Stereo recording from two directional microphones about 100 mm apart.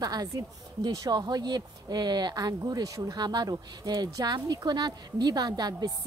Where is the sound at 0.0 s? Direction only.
40° right (ahead or behind).